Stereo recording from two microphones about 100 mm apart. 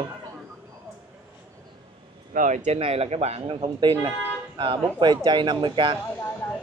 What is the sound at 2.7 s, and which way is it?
A man's voice, 90° right.